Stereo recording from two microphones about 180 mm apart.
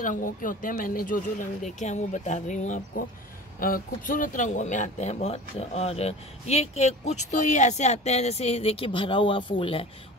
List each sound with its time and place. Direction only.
0.0 s speech: 50° left (ahead or behind); by 9.8 s 30° left (ahead or behind)